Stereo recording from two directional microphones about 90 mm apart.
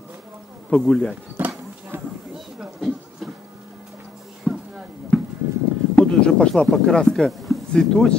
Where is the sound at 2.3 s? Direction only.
Centre (ahead or behind).